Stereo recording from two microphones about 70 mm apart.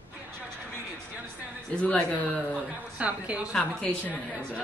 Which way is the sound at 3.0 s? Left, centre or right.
Centre.